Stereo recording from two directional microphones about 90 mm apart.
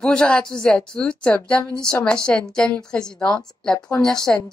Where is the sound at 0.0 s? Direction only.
10° left (ahead or behind).